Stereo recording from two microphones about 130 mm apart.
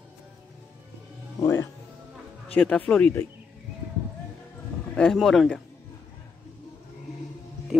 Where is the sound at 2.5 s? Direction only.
10° left (ahead or behind).